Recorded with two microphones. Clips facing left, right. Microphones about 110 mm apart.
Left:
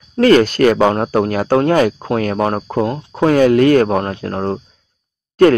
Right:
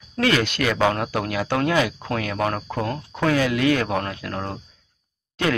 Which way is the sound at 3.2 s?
45° left (ahead or behind).